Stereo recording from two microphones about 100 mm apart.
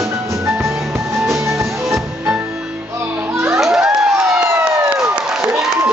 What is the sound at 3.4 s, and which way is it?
Crowd, 5° right (ahead or behind).